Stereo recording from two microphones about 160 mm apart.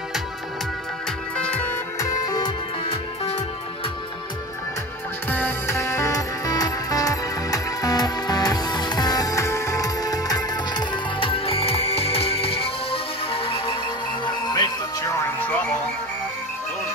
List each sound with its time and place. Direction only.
1.3 s music: 10° left (ahead or behind)
2.2 s music: 25° left (ahead or behind)
5.3 s music: 15° left (ahead or behind)